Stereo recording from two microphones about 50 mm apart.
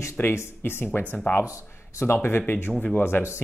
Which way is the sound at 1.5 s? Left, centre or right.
Left.